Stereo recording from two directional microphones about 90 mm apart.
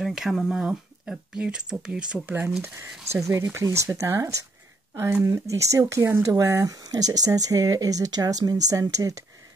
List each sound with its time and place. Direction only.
0.0 s speech: centre (ahead or behind)
2.2 s speech: 20° right (ahead or behind); by 9.2 s 40° right (ahead or behind)